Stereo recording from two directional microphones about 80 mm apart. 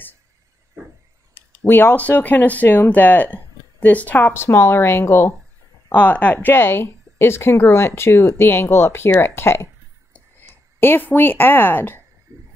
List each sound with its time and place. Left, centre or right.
1.6 s speech: left
5.9 s speech: centre
12.3 s a sound: right